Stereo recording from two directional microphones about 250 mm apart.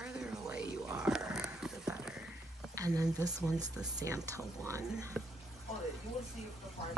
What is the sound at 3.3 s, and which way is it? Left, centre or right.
Speech, right.